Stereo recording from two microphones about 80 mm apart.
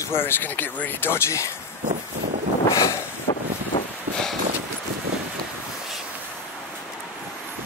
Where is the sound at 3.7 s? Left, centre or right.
Left.